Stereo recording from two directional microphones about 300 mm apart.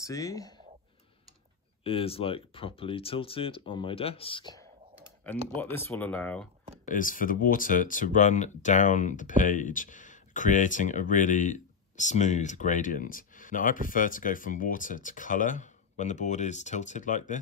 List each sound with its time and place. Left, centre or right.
0.0 s speech: centre
1.9 s speech: centre
6.9 s speech: left